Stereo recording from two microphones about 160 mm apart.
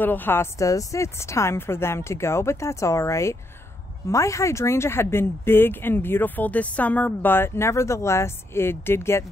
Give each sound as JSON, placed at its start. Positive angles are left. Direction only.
{"t": 0.0, "sound": "speech", "side_deg": 10}